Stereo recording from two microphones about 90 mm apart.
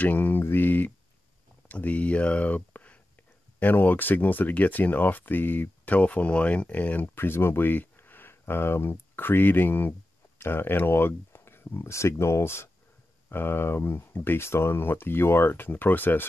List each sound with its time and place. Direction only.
0.0 s speech: 20° left (ahead or behind)